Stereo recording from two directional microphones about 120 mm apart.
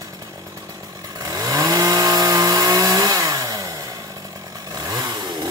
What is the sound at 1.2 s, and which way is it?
Chainsaw, 30° right (ahead or behind).